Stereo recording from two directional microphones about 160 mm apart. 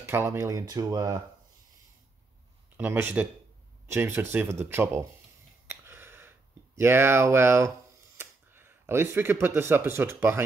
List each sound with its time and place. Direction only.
0.0 s speech: 15° right (ahead or behind)
2.8 s speech: 15° right (ahead or behind)
5.7 s a sound: 15° right (ahead or behind)
8.2 s speech: 15° right (ahead or behind)